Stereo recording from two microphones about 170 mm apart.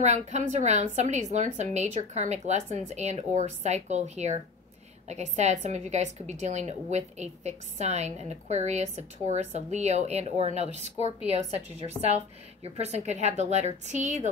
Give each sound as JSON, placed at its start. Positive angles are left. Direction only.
{"t": 0.0, "sound": "a woman's voice", "side_deg": -45}
{"t": 12.6, "sound": "speech", "side_deg": -40}